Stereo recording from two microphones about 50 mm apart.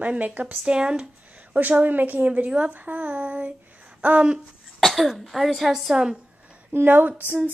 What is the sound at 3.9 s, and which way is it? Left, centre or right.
Speech, right.